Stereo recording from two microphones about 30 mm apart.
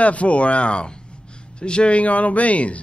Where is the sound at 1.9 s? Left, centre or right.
Left.